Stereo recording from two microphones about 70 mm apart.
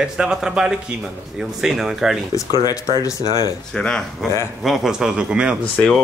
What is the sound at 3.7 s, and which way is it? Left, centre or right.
Speech, centre.